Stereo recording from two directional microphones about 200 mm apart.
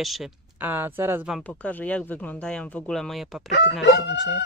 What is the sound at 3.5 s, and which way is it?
Speech, 60° left (ahead or behind).